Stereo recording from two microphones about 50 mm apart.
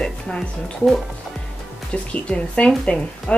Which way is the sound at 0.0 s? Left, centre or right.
Centre.